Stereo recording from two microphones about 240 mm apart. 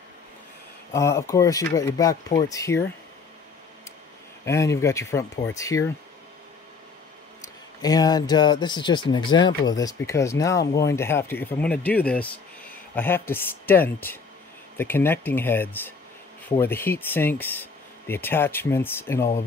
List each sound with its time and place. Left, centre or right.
0.9 s speech: centre
4.5 s speech: centre
7.8 s speech: centre